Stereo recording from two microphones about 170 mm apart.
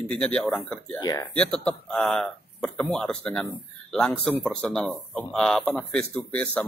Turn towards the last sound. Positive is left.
turn(degrees=10)  # may be behind; listen again after turning